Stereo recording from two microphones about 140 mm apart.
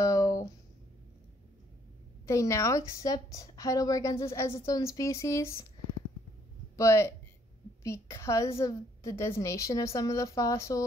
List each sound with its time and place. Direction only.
0.0 s a sound: 20° left (ahead or behind)
2.2 s a woman's voice: 20° left (ahead or behind)
6.8 s a woman's voice: 20° left (ahead or behind)